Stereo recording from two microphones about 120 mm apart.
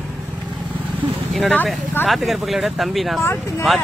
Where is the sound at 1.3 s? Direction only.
Centre (ahead or behind).